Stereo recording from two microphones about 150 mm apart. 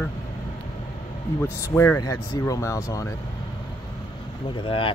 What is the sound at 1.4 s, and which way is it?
Speech, 20° left (ahead or behind).